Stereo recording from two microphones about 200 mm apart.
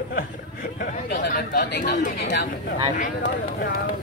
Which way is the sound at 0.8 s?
50° left (ahead or behind).